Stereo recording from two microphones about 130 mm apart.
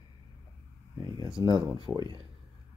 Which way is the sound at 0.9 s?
30° right (ahead or behind).